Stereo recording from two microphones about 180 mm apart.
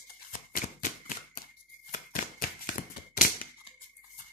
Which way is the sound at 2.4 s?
50° left (ahead or behind).